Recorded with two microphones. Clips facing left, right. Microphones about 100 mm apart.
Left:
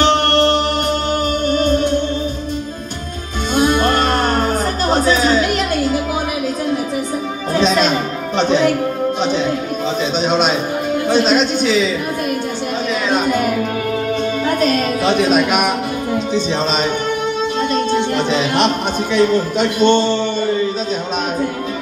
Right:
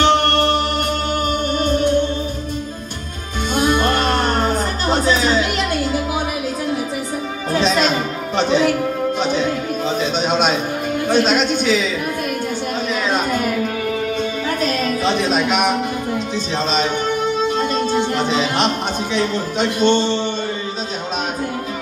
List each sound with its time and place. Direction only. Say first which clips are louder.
3.5 s music: left 3 dB; 45° left (ahead or behind)
8.4 s music: left 2 dB; 5° right (ahead or behind)
11.1 s a sound: left 1 dB; 5° right (ahead or behind)
13.1 s music: left 4 dB; 5° left (ahead or behind)
15.2 s a sound: left 3 dB; 5° left (ahead or behind)
19.1 s speech: left 7 dB; 45° left (ahead or behind)